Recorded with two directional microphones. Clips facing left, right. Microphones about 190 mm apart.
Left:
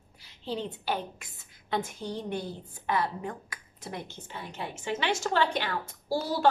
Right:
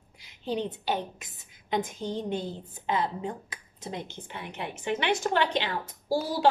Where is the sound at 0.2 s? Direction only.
15° right (ahead or behind).